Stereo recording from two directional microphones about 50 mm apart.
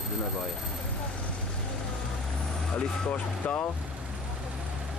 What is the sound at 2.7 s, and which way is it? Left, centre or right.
Speech, left.